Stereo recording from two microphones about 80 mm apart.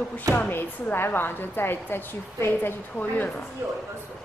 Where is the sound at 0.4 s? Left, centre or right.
Left.